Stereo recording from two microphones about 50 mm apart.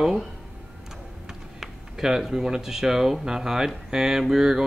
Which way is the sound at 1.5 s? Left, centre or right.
Centre.